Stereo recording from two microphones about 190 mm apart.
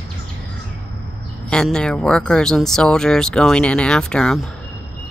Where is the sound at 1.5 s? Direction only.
5° left (ahead or behind).